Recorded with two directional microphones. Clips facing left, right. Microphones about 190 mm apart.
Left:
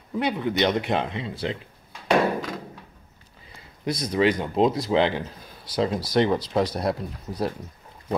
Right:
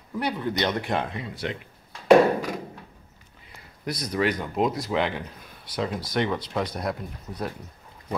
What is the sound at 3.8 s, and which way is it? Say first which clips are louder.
Speech: left 4 dB; 25° left (ahead or behind).